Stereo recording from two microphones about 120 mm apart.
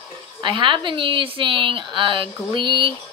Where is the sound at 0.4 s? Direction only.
40° right (ahead or behind).